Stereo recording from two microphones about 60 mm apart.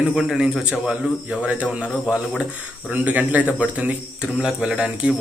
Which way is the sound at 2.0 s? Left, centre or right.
Centre.